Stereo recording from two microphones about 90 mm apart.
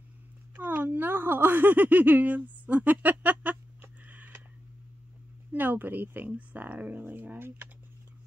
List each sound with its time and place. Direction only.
0.6 s speech: 20° right (ahead or behind)
5.5 s speech: 20° right (ahead or behind)